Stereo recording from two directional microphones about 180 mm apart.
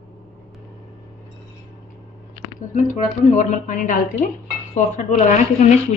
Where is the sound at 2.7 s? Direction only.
45° left (ahead or behind).